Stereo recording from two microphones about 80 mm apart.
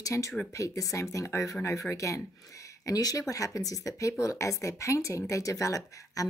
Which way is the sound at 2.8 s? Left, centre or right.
Left.